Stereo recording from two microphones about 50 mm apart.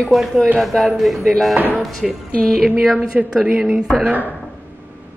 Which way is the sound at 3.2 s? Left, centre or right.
Right.